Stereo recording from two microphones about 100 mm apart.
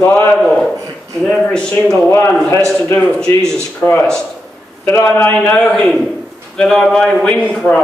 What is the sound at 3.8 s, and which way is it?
Speech, 30° left (ahead or behind).